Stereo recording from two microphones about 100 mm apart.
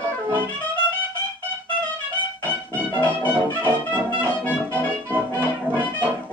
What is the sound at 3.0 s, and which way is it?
Music, 20° left (ahead or behind).